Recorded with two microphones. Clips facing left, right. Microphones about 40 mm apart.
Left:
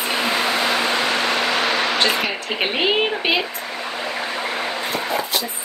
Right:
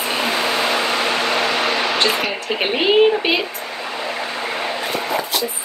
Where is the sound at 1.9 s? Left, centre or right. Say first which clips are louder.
Right 1 dB; centre.